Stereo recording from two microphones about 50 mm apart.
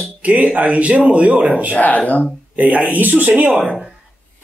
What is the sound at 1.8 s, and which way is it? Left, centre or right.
Speech, left.